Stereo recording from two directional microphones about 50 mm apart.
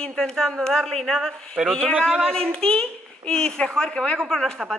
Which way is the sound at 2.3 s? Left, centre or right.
Centre.